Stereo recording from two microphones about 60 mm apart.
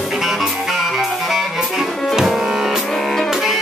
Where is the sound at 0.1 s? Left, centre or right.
Centre.